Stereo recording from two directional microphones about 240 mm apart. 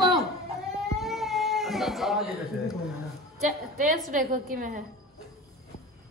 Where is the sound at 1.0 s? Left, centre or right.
Centre.